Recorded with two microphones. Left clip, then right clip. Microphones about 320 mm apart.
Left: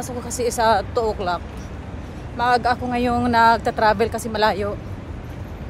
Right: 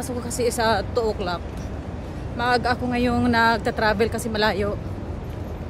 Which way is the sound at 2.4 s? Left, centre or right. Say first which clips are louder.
Left 3 dB; centre.